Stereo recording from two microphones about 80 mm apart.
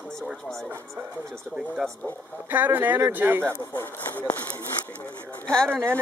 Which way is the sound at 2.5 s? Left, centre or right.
Right.